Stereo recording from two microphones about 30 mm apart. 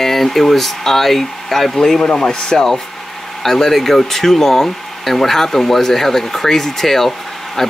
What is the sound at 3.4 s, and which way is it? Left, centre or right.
Speech, centre.